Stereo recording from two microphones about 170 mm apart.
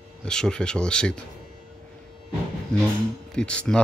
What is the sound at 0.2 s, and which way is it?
Speech, 5° left (ahead or behind).